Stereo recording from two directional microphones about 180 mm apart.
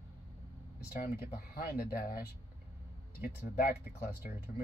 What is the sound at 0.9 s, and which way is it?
Speech, 55° left (ahead or behind).